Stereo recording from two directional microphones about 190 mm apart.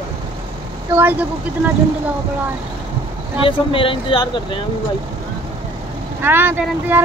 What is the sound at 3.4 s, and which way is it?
Speech, 25° left (ahead or behind).